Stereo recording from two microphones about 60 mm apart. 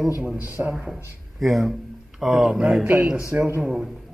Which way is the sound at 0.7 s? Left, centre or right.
Centre.